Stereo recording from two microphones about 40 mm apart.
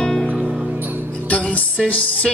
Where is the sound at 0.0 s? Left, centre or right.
Centre.